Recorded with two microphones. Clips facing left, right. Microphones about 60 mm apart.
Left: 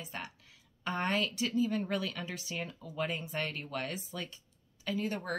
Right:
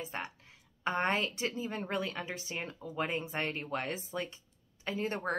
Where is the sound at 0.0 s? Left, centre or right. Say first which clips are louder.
Right 3 dB; right.